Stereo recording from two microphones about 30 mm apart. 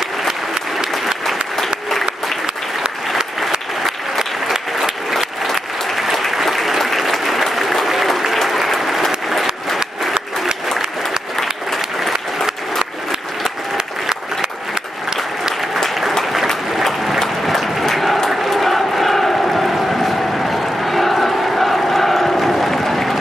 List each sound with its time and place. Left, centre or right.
1.9 s applause: centre
3.8 s applause: centre
12.7 s applause: centre
13.7 s applause: right
15.9 s applause: centre
17.5 s applause: centre
18.5 s crowd: centre
19.5 s a sound: centre
21.5 s crowd: centre